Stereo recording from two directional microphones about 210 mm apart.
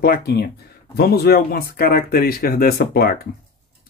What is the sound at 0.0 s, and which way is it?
Speech, 45° left (ahead or behind).